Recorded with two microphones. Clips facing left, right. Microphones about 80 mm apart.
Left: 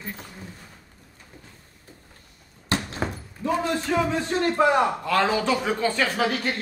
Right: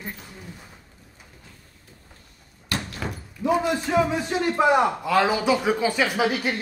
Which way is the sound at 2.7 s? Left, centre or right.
Left.